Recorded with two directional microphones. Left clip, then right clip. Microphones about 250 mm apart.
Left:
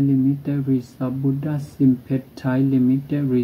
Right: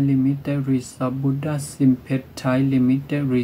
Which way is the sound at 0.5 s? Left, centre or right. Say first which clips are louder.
Even; centre.